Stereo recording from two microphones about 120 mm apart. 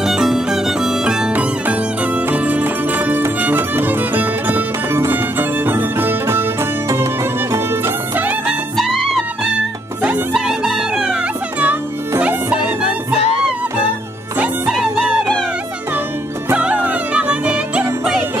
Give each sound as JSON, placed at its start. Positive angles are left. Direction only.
{"t": 0.0, "sound": "music", "side_deg": -5}
{"t": 10.3, "sound": "music", "side_deg": -5}
{"t": 14.7, "sound": "music", "side_deg": 0}
{"t": 16.4, "sound": "music", "side_deg": -10}